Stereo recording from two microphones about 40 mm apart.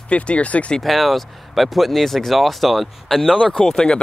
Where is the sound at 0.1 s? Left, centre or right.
Left.